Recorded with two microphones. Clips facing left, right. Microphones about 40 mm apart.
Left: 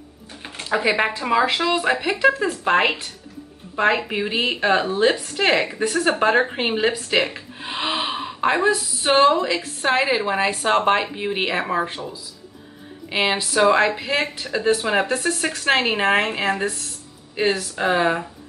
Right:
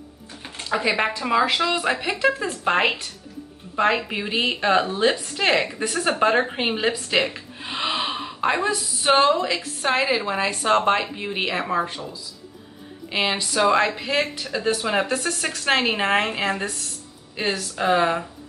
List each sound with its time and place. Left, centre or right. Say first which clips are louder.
0.4 s a sound: left 2 dB; centre
1.3 s a woman's voice: left 1 dB; centre
7.2 s gasp: even; centre
9.2 s speech: left 3 dB; centre